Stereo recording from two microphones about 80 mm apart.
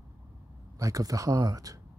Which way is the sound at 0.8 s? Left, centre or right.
Right.